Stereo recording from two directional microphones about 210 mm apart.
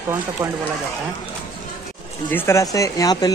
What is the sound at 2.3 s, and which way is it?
Speech, 15° left (ahead or behind).